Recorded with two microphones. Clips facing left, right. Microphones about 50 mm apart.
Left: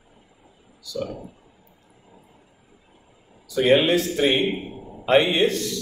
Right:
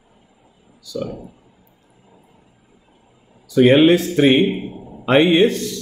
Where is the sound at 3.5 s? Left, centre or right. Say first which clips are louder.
Right 6 dB; right.